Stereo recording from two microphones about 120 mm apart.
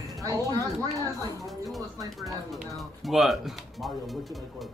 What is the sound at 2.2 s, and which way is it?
Music, centre (ahead or behind).